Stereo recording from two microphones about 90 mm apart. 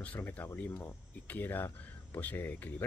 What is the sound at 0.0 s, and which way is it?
Speech, 15° left (ahead or behind).